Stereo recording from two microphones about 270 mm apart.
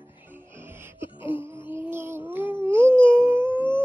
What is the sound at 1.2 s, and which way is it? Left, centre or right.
Wail, centre.